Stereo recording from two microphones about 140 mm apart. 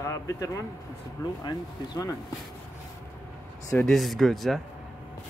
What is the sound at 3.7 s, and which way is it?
Speech, 5° left (ahead or behind).